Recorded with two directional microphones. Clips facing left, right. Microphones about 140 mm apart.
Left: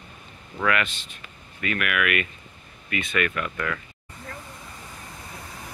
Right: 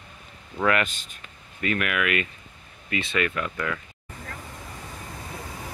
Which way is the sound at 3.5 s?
10° right (ahead or behind).